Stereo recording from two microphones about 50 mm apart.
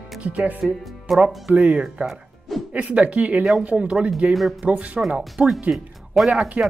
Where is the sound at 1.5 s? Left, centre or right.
Right.